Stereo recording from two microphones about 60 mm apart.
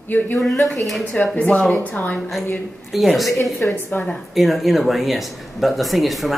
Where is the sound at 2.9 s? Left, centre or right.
Centre.